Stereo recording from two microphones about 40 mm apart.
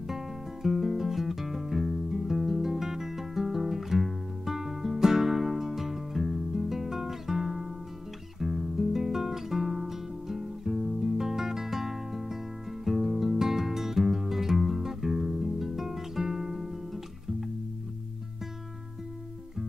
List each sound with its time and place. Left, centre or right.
0.1 s music: centre